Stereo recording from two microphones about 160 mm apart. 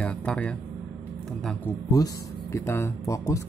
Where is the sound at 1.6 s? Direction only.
20° left (ahead or behind).